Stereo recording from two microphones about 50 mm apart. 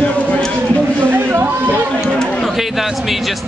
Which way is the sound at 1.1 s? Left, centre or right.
Right.